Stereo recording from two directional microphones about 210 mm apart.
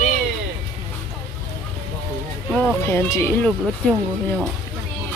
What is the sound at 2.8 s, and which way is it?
Speech, 15° left (ahead or behind).